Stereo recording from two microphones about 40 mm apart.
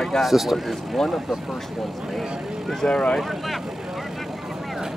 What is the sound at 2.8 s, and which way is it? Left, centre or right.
Speech, left.